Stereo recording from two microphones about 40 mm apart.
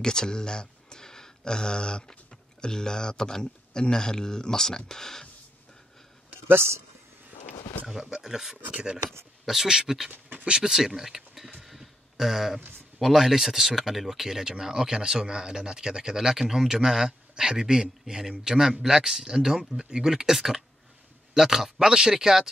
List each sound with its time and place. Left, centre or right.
0.0 s speech: centre
6.4 s speech: right
7.9 s speech: centre
11.6 s a sound: centre
12.5 s speech: right
13.0 s speech: centre